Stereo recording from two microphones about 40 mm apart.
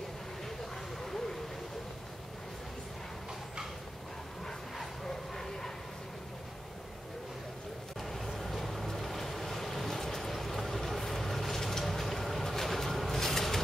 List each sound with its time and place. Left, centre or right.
4.5 s bow-wow: centre
8.0 s vehicle: centre